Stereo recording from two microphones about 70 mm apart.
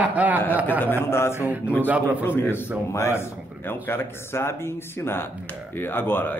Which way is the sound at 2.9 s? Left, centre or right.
Left.